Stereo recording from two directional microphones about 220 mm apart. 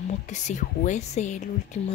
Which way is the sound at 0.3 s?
30° left (ahead or behind).